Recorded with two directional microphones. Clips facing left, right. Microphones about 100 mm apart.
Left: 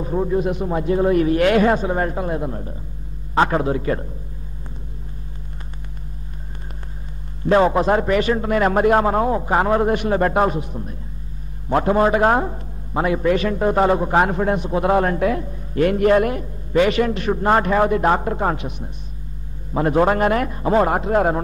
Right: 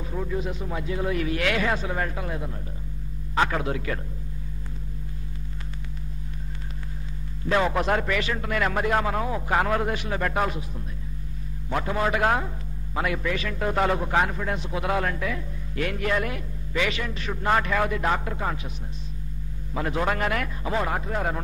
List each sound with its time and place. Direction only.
0.0 s speech: 35° left (ahead or behind)
0.4 s a man's voice: 60° left (ahead or behind)
0.7 s speech: 40° left (ahead or behind)
7.4 s speech: 35° left (ahead or behind)
9.8 s speech: 45° left (ahead or behind)
11.7 s speech: 40° left (ahead or behind)
14.2 s a man's voice: 45° left (ahead or behind)
15.4 s a man's voice: 35° left (ahead or behind); by 17.3 s 55° left (ahead or behind)
17.3 s speech: 35° left (ahead or behind)
18.6 s a man's voice: 65° left (ahead or behind)
19.7 s speech: 40° left (ahead or behind)